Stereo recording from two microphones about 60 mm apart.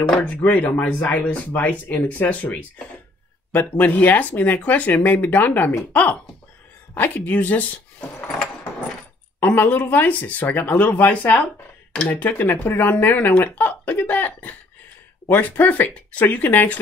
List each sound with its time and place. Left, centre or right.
0.2 s speech: left
7.0 s speech: left
9.4 s speech: left
11.9 s speech: centre
12.2 s speech: left